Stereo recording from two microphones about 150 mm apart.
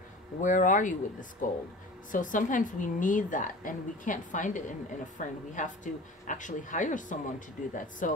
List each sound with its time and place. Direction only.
0.4 s a woman's voice: 60° left (ahead or behind)